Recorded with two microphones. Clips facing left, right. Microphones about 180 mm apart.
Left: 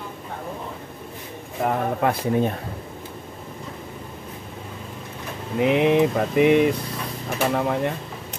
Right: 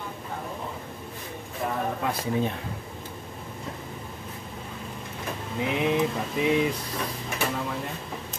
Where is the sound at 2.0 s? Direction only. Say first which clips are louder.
Left 7 dB; 55° left (ahead or behind).